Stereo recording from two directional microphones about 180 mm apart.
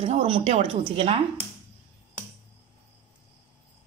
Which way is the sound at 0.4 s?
40° right (ahead or behind).